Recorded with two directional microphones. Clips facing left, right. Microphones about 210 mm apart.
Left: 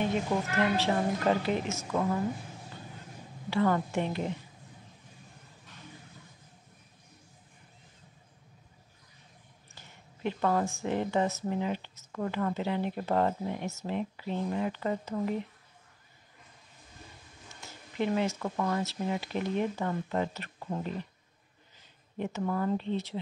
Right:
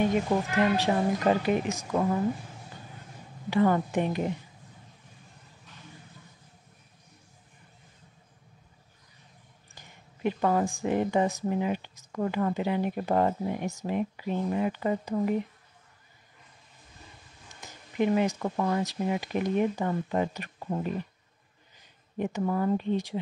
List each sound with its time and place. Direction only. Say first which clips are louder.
0.3 s a woman's voice: right 3 dB; 30° right (ahead or behind)
0.7 s a woman's voice: right 3 dB; 15° right (ahead or behind)
3.4 s a woman's voice: right 3 dB; 15° right (ahead or behind)
9.8 s a woman's voice: right 4 dB; 15° right (ahead or behind)
17.6 s a woman's voice: right 5 dB; 15° right (ahead or behind)
22.1 s a woman's voice: right 3 dB; 15° right (ahead or behind)